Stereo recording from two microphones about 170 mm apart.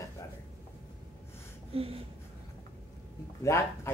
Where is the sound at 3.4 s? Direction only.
15° left (ahead or behind).